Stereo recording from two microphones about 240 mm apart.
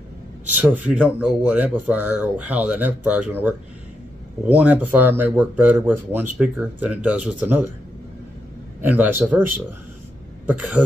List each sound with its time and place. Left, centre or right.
0.6 s speech: centre
8.8 s speech: centre
10.4 s speech: centre